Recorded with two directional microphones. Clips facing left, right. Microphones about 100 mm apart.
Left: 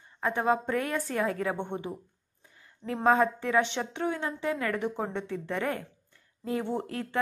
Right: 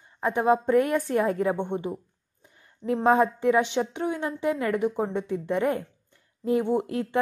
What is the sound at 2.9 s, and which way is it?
A woman's voice, 15° right (ahead or behind).